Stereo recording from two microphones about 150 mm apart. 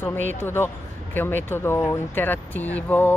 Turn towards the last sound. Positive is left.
turn(degrees=10)  # may be behind; listen again after turning